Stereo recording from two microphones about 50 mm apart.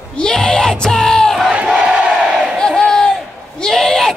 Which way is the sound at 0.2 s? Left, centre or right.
Centre.